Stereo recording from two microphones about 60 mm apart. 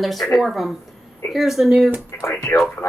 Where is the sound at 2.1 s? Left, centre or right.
Left.